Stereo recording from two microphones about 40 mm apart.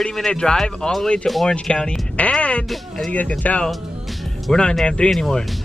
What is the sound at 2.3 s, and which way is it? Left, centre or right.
Music, left.